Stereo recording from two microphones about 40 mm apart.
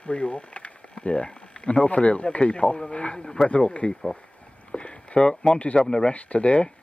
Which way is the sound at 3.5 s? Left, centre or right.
Left.